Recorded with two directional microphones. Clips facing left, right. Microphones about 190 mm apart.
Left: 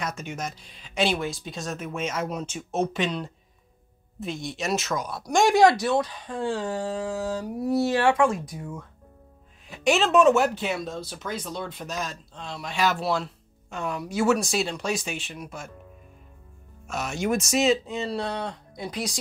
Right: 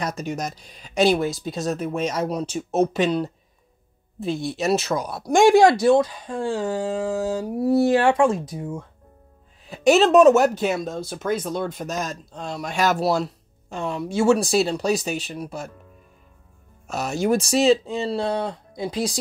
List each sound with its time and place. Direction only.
0.0 s speech: 40° right (ahead or behind)
9.7 s speech: 40° right (ahead or behind)
16.8 s speech: 35° right (ahead or behind)